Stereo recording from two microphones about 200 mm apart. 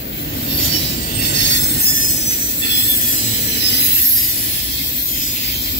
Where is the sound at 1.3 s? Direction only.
60° left (ahead or behind).